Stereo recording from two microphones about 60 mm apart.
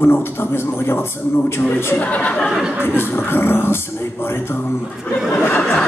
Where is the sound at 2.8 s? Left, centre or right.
Left.